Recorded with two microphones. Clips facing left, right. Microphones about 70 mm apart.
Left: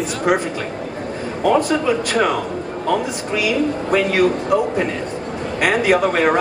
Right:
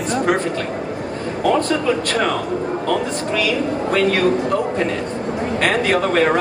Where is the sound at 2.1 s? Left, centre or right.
Centre.